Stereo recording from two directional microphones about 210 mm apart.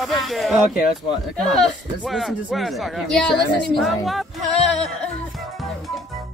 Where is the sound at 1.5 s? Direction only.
Centre (ahead or behind).